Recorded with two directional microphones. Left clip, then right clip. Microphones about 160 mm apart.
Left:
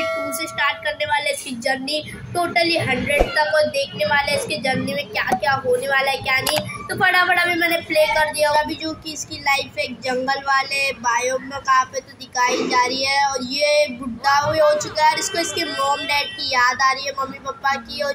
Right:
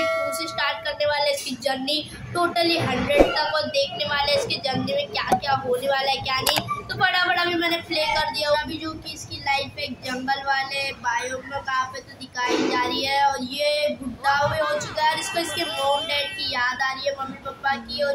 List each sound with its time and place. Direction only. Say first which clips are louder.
0.0 s doorbell: even; centre (ahead or behind)
0.6 s a woman's voice: left 5 dB; 15° left (ahead or behind)
14.4 s speech: left 6 dB; centre (ahead or behind)
15.0 s a woman's voice: left 5 dB; 20° left (ahead or behind)